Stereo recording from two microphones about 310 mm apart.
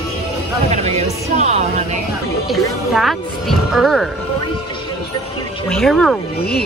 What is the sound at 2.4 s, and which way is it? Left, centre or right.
Speech, centre.